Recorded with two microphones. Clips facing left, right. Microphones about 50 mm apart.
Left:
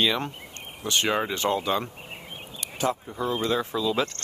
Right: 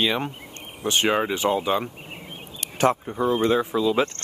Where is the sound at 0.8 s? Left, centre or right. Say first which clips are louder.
Right 3 dB; right.